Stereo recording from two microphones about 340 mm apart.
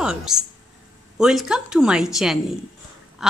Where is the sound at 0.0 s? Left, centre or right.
Centre.